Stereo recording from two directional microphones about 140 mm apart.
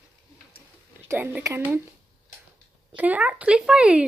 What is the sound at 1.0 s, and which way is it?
Speech, 15° right (ahead or behind).